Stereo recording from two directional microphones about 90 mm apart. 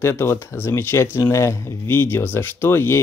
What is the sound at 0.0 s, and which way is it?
Speech, 30° left (ahead or behind).